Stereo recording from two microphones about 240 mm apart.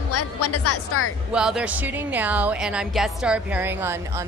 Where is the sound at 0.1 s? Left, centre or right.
Left.